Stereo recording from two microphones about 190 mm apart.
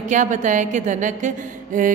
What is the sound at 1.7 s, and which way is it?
Mantra, 45° right (ahead or behind).